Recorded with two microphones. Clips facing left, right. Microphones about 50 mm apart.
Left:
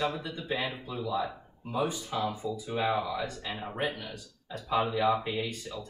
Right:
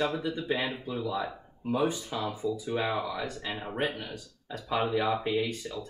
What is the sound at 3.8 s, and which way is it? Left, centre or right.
Speech, right.